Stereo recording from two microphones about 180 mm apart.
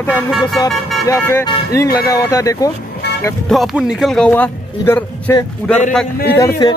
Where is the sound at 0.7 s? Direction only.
Centre (ahead or behind).